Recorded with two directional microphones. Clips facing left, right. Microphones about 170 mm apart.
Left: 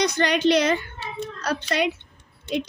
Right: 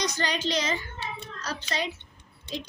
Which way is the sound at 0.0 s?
65° left (ahead or behind).